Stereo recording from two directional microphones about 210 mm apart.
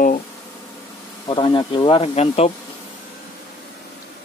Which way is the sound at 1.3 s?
20° left (ahead or behind).